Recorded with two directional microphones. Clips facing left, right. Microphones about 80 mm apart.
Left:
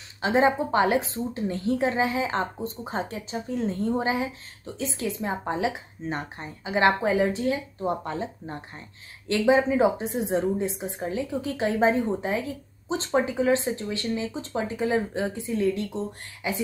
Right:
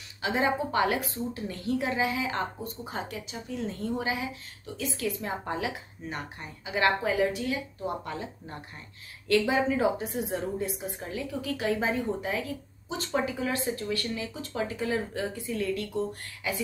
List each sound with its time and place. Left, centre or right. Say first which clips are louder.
0.2 s a woman's voice: left 6 dB; left